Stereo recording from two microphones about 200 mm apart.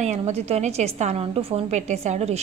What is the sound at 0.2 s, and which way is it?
A woman's voice, 30° right (ahead or behind).